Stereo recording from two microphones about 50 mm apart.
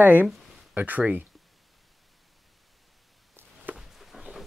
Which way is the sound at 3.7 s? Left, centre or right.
Right.